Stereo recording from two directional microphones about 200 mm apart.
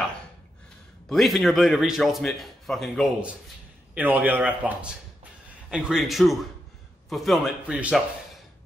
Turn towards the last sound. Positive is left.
turn(degrees=-5)  # may be behind; listen again after turning